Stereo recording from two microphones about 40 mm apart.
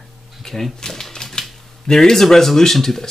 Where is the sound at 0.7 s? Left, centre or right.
Centre.